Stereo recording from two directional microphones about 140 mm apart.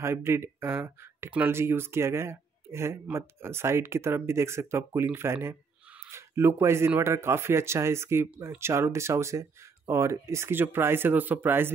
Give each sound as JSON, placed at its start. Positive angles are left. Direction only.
{"t": 0.0, "sound": "speech", "side_deg": -20}